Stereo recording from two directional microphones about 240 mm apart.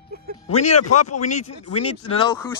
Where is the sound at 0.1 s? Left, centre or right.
Right.